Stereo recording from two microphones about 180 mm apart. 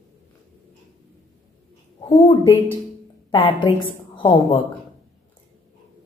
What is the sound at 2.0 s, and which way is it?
A woman's voice, 20° left (ahead or behind).